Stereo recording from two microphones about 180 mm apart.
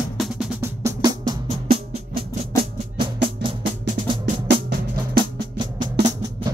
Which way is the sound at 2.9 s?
30° right (ahead or behind).